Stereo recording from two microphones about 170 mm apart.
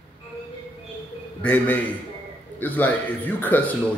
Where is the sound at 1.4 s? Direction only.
10° left (ahead or behind).